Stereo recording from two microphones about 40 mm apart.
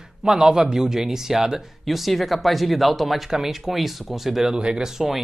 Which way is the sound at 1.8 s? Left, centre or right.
Centre.